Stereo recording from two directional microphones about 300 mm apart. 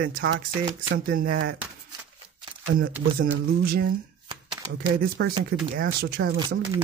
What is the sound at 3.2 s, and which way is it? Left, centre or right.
Speech, right.